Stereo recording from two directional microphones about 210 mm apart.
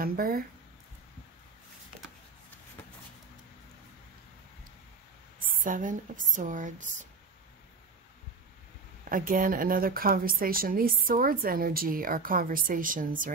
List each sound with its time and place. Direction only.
0.0 s speech: 45° right (ahead or behind)
5.4 s speech: 40° right (ahead or behind)
9.1 s speech: 40° right (ahead or behind)